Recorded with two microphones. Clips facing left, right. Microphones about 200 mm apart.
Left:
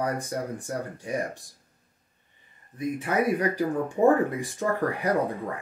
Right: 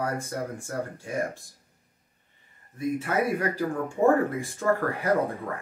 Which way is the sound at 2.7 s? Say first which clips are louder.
Even; 15° left (ahead or behind).